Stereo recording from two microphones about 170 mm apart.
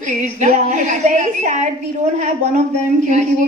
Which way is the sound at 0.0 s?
45° right (ahead or behind).